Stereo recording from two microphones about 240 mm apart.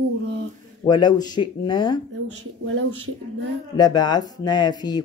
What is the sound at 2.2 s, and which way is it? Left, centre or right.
Speech, right.